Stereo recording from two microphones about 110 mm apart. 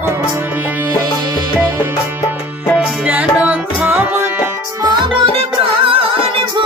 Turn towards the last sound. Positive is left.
turn(degrees=-55)  # may be behind; listen again after turning